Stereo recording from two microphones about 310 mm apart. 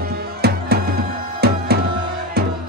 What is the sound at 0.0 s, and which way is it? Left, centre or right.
Music, right.